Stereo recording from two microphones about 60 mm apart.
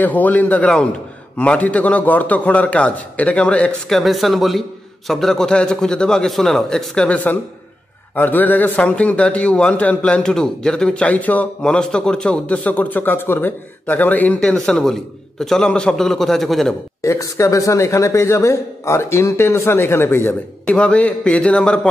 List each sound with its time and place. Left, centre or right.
0.0 s a man's voice: left
3.9 s a man's voice: centre
8.1 s a man's voice: left
10.2 s a man's voice: centre
11.1 s a man's voice: left
11.6 s a man's voice: centre; by 14.4 s left
14.4 s a man's voice: centre
17.0 s a man's voice: left
20.6 s a man's voice: centre